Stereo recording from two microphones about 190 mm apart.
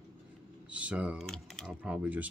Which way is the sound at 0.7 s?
5° right (ahead or behind).